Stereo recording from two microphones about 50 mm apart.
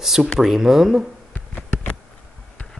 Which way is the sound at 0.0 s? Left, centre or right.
Centre.